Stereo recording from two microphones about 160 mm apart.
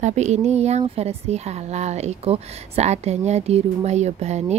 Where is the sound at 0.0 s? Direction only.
45° right (ahead or behind).